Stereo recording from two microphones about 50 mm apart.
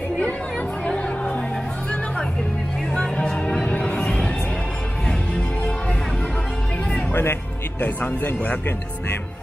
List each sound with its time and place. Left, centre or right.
0.2 s music: left
2.9 s music: centre
7.1 s music: left
7.8 s speech: left